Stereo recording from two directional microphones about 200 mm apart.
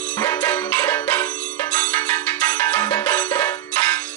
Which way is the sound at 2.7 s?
15° left (ahead or behind).